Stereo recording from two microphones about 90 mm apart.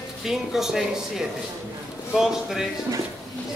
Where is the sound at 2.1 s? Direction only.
5° right (ahead or behind).